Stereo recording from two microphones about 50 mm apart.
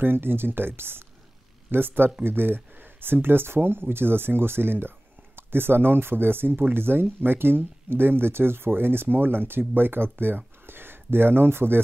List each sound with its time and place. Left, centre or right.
0.0 s speech: right